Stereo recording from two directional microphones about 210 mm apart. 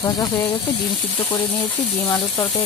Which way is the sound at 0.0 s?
20° left (ahead or behind).